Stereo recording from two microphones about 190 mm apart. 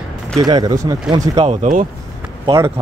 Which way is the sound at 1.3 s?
35° right (ahead or behind).